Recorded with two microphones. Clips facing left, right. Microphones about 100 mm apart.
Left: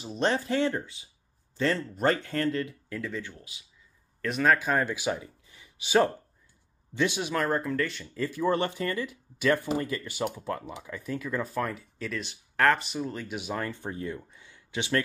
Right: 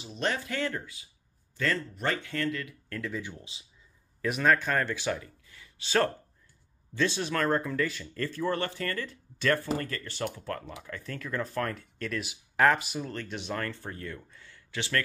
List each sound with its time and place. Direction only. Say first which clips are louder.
0.0 s speech: left 4 dB; 35° left (ahead or behind)
2.0 s speech: left 5 dB; 40° left (ahead or behind)
2.9 s speech: left 1 dB; centre (ahead or behind)
3.5 s speech: even; 30° right (ahead or behind)
4.2 s speech: left 1 dB; centre (ahead or behind); by 15.0 s 20° left (ahead or behind)